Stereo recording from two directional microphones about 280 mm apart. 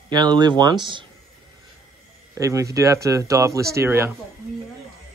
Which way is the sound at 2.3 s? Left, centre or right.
Centre.